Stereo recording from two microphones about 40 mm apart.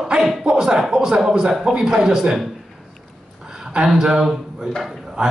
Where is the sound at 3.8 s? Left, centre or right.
Centre.